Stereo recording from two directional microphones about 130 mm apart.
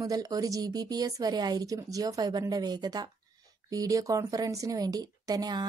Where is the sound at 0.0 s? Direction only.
30° right (ahead or behind).